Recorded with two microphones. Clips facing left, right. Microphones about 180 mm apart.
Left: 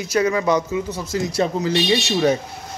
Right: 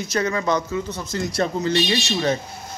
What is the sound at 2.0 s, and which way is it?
Speech, 20° left (ahead or behind).